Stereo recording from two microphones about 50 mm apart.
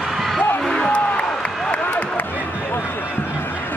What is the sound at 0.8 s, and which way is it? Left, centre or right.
Music, left.